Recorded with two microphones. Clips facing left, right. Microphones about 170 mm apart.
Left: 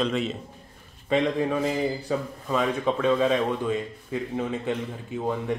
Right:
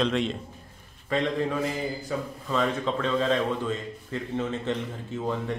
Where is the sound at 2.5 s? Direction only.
10° left (ahead or behind).